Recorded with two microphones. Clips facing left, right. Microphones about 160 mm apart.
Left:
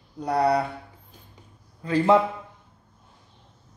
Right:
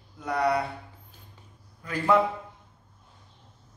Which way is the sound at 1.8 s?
30° left (ahead or behind).